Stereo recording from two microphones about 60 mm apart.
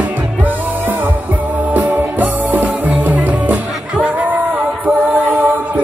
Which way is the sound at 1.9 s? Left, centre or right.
Right.